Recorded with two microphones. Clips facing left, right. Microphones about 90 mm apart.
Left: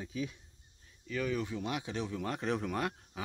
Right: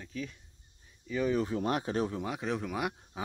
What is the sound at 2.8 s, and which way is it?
Speech, 15° right (ahead or behind).